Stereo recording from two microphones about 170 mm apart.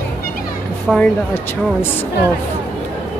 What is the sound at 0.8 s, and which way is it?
Speech, 5° left (ahead or behind).